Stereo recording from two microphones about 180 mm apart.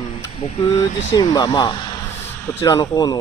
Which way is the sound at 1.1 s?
20° left (ahead or behind).